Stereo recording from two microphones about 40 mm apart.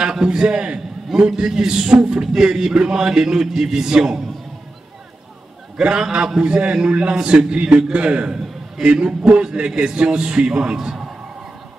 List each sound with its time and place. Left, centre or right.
0.0 s a man's voice: centre
5.8 s a man's voice: right
10.8 s a sound: centre